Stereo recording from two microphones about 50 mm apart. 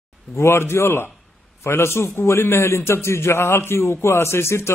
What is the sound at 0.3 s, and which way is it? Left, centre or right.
A man's voice, left.